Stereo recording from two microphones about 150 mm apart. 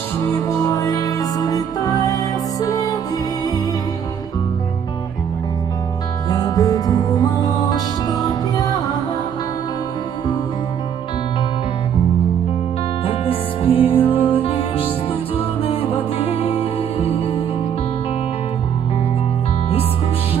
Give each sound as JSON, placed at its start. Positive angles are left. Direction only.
{"t": 0.5, "sound": "music", "side_deg": 20}
{"t": 6.2, "sound": "music", "side_deg": 25}
{"t": 13.0, "sound": "music", "side_deg": 40}